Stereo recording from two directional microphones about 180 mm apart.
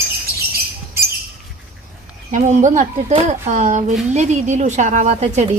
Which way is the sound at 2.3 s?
45° right (ahead or behind).